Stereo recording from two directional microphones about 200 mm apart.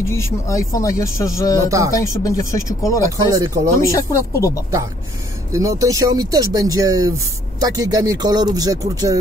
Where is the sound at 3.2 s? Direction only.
15° right (ahead or behind).